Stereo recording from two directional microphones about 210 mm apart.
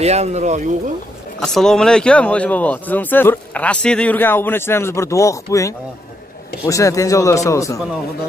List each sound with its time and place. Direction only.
0.0 s speech: 30° right (ahead or behind)
1.4 s speech: centre (ahead or behind)